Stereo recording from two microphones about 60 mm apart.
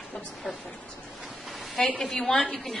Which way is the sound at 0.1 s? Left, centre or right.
Centre.